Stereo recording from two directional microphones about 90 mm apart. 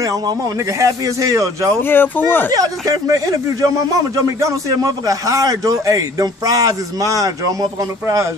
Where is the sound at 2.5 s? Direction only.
45° right (ahead or behind).